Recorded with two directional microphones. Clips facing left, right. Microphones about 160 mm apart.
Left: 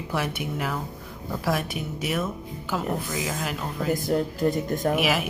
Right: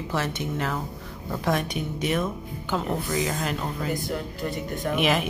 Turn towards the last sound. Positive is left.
turn(degrees=5)  # may be behind; listen again after turning